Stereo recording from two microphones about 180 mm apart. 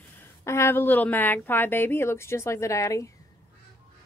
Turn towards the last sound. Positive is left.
turn(degrees=15)  # may be behind; listen again after turning